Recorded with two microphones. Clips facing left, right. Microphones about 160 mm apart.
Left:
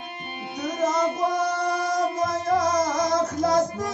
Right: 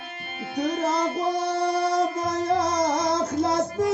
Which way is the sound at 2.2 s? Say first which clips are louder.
Left 1 dB; 30° right (ahead or behind).